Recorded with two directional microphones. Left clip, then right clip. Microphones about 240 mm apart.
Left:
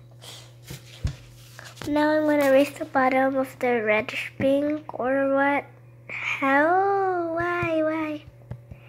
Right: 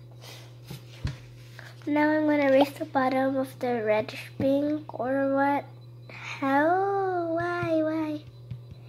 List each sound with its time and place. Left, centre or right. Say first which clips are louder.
1.6 s speech: left 2 dB; centre
6.7 s child singing: left 4 dB; left